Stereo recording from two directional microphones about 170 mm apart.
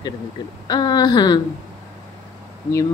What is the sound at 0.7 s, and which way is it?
Speech, 25° left (ahead or behind).